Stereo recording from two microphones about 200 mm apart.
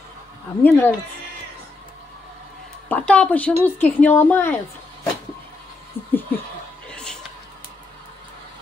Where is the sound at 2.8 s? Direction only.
5° left (ahead or behind).